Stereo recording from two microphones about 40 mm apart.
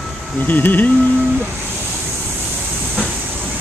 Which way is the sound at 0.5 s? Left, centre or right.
Left.